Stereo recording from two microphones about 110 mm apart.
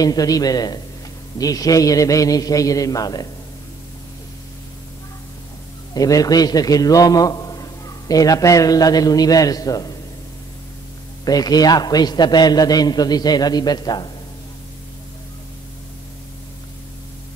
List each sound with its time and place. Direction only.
0.0 s a man's voice: 35° left (ahead or behind)
5.9 s a man's voice: 35° left (ahead or behind)
11.2 s a man's voice: 35° left (ahead or behind)